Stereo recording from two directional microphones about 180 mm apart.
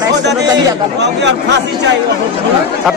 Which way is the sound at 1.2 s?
75° right (ahead or behind).